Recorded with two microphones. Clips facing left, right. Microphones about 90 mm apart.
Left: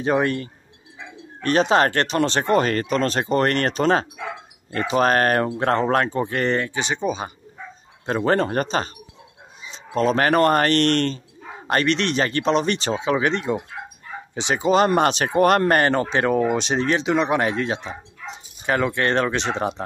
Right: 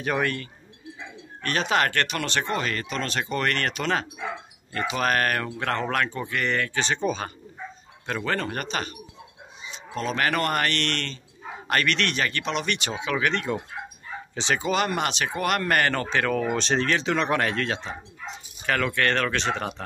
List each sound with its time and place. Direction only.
0.0 s speech: 25° left (ahead or behind)
2.4 s speech: 45° left (ahead or behind)
6.7 s speech: 10° left (ahead or behind)
8.1 s speech: 35° left (ahead or behind)
11.6 s speech: 25° left (ahead or behind)